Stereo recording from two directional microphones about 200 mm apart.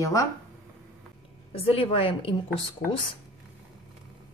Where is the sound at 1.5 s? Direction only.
30° left (ahead or behind).